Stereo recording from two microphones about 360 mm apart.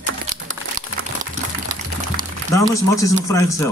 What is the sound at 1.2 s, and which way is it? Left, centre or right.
Boiling, right.